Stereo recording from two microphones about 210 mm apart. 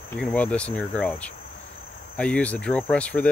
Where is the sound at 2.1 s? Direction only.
5° left (ahead or behind).